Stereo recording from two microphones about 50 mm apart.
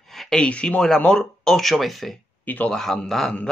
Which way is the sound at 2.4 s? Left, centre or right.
Left.